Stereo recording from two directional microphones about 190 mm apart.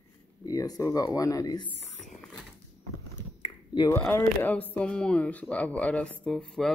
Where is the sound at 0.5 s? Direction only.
20° left (ahead or behind).